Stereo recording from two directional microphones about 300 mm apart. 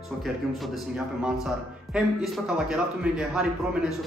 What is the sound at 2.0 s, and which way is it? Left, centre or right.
A man's voice, centre.